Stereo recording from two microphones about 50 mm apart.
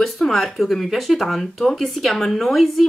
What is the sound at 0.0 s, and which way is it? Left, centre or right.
Speech, centre.